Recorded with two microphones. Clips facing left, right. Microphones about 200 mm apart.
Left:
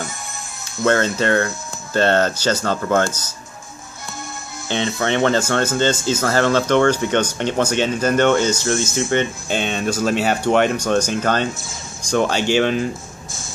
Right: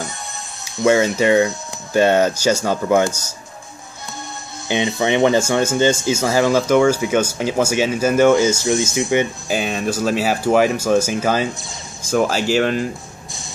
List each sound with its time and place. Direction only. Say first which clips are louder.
0.8 s speech: right 3 dB; 10° right (ahead or behind)
4.6 s speech: right 2 dB; 15° right (ahead or behind)
8.6 s speech: right 2 dB; 15° right (ahead or behind); by 13.4 s centre (ahead or behind)